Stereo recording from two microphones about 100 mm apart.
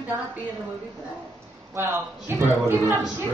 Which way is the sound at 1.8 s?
25° right (ahead or behind).